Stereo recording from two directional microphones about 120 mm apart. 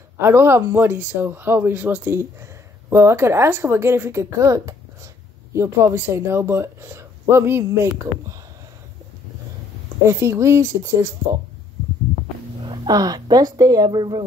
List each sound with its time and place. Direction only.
0.2 s speech: 20° right (ahead or behind)
10.0 s speech: 20° right (ahead or behind)
12.6 s speech: 35° right (ahead or behind)